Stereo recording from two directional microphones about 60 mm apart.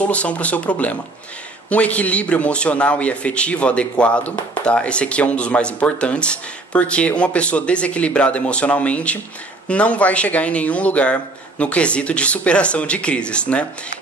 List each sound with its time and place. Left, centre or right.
0.0 s a man's voice: left